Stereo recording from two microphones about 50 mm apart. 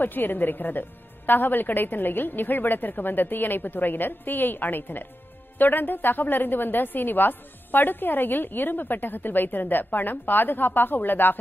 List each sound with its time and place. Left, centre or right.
0.0 s a woman's voice: left